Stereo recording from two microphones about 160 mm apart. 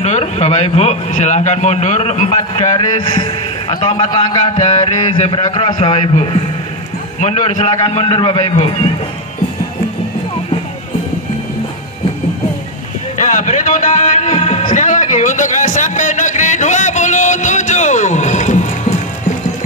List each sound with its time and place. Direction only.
0.0 s a man's voice: 40° left (ahead or behind)
2.7 s a man's voice: 30° left (ahead or behind)
4.6 s a man's voice: 45° left (ahead or behind)
5.4 s a man's voice: 30° left (ahead or behind)
7.2 s a man's voice: 45° left (ahead or behind)
13.2 s a sound: 50° left (ahead or behind)